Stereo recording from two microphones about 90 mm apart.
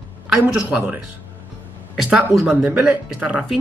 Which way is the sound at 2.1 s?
5° right (ahead or behind).